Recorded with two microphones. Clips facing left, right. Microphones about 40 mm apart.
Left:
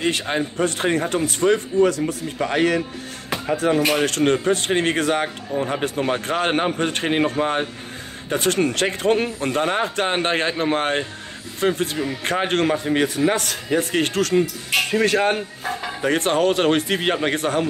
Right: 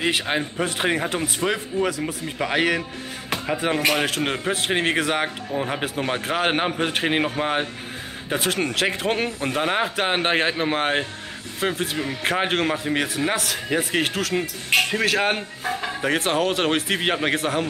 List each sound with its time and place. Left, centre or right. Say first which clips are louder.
0.0 s a man's voice: left 1 dB; centre
3.3 s music: left 2 dB; centre
3.8 s a man's voice: left 3 dB; centre